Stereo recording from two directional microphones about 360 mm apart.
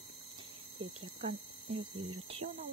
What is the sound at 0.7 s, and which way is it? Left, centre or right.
Speech, right.